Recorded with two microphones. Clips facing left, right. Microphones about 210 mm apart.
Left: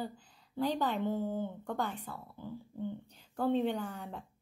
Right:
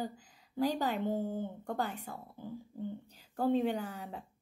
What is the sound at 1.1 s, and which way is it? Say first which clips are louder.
Speech: even; 45° right (ahead or behind).